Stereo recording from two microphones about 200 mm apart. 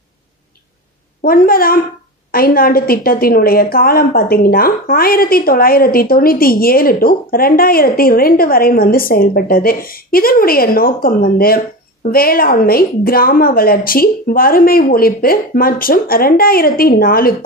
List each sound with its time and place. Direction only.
1.2 s a woman's voice: 45° left (ahead or behind)